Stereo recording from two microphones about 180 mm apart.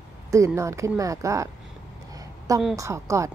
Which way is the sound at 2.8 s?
15° right (ahead or behind).